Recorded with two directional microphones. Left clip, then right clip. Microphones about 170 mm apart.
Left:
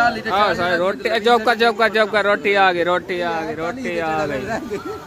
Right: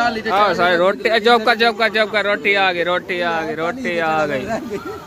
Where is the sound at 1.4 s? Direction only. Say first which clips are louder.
Right 1 dB; 30° left (ahead or behind).